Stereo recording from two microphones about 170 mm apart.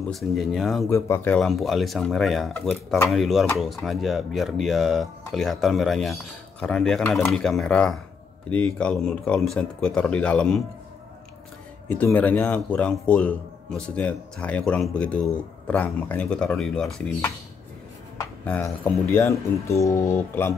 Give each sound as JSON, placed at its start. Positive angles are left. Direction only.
{"t": 0.1, "sound": "speech", "side_deg": 0}
{"t": 0.8, "sound": "speech", "side_deg": 15}
{"t": 11.9, "sound": "a man's voice", "side_deg": 10}
{"t": 18.1, "sound": "cutlery", "side_deg": 15}
{"t": 19.1, "sound": "a man's voice", "side_deg": 15}